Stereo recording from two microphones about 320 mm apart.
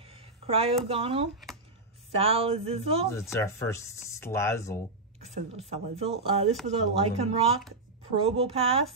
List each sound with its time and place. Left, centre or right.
0.0 s a sound: centre
0.8 s speech: centre
3.1 s speech: centre
5.2 s speech: centre